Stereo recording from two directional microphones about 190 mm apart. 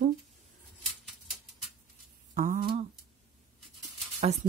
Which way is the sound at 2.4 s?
45° right (ahead or behind).